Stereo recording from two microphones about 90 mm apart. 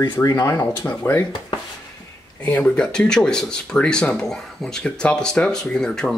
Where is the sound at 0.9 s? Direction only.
25° left (ahead or behind).